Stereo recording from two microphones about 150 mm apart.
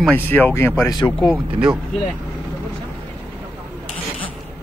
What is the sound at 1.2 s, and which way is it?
Speech, 10° right (ahead or behind).